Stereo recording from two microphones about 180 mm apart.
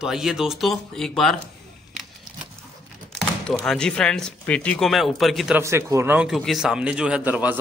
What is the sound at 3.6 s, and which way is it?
Speech, 5° left (ahead or behind).